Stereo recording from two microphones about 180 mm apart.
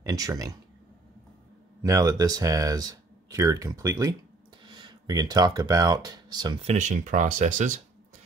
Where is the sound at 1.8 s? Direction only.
20° right (ahead or behind).